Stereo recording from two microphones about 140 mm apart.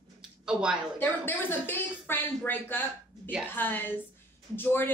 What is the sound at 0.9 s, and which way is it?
A man's voice, 15° left (ahead or behind).